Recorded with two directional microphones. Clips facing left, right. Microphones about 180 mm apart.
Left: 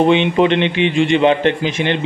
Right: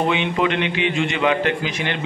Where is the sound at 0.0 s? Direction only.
25° left (ahead or behind).